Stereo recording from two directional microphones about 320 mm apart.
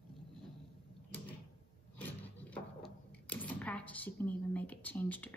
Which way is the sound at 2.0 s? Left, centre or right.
Centre.